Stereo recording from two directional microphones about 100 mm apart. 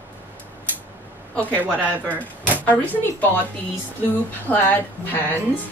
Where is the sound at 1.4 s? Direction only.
20° right (ahead or behind).